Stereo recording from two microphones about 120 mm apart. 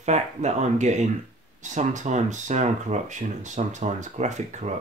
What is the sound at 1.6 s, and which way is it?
Speech, 90° right.